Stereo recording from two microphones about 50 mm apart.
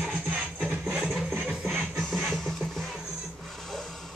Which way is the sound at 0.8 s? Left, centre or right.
Centre.